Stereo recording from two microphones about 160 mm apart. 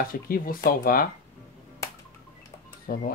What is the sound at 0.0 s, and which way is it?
Speech, 65° left (ahead or behind).